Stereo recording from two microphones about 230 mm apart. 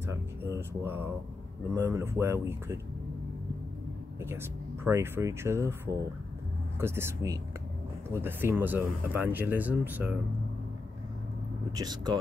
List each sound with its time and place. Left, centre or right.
0.0 s speech: centre
4.8 s speech: centre
6.8 s speech: centre
11.7 s speech: centre